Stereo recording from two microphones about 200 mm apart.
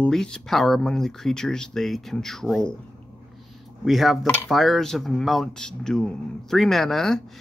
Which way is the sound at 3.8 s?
Centre (ahead or behind).